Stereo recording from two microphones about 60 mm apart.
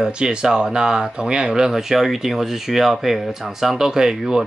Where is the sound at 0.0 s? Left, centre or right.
Centre.